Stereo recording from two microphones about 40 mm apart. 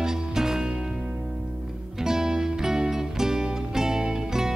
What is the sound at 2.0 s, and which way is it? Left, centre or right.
Music, centre.